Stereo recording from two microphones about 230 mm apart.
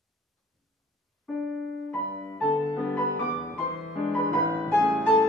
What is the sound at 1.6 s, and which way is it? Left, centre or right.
Music, right.